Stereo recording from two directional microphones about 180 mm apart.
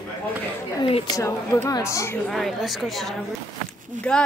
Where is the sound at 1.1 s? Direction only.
15° left (ahead or behind).